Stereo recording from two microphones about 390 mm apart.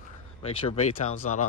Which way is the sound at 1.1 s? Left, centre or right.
Left.